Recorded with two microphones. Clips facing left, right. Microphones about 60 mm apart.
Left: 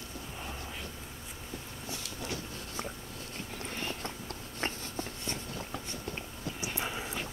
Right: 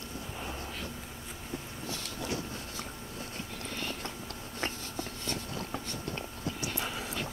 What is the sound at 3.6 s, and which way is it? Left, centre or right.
Vehicle, left.